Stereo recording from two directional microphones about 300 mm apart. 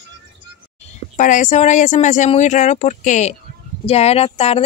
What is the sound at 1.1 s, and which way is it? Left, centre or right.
Speech, left.